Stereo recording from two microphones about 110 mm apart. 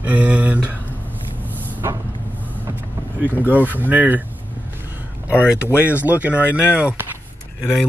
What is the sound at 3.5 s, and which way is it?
Speech, 15° right (ahead or behind).